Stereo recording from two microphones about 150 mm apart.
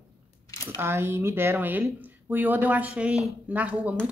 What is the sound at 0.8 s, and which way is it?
Speech, 15° right (ahead or behind).